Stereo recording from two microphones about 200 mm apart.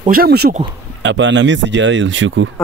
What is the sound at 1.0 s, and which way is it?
Speech, 65° right (ahead or behind).